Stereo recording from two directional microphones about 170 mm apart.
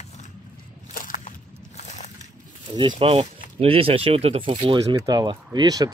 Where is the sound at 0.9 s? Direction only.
50° left (ahead or behind).